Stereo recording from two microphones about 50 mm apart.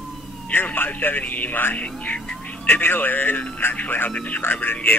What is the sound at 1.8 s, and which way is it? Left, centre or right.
Speech, left.